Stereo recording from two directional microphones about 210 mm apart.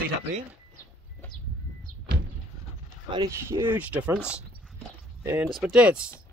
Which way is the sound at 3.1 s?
15° right (ahead or behind).